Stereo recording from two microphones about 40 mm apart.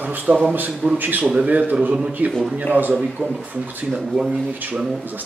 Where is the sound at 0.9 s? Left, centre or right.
Right.